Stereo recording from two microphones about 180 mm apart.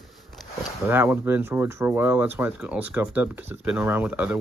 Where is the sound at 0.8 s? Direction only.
10° right (ahead or behind).